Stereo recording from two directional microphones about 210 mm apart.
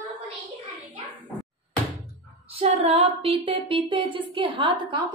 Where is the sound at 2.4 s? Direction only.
30° right (ahead or behind).